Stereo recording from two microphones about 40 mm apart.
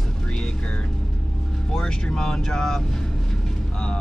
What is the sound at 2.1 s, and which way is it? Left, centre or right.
Speech, centre.